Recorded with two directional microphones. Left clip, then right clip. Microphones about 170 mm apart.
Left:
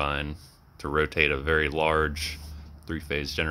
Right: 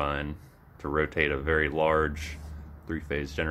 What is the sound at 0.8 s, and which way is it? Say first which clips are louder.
Speech: left 3 dB; 45° left (ahead or behind).